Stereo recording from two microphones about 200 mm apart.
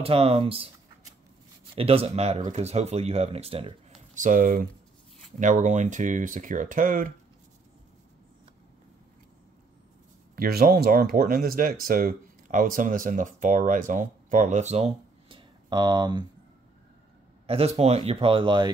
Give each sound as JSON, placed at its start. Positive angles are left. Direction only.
{"t": 0.0, "sound": "speech", "side_deg": -30}
{"t": 1.8, "sound": "speech", "side_deg": -30}
{"t": 10.3, "sound": "speech", "side_deg": -50}
{"t": 17.5, "sound": "speech", "side_deg": -30}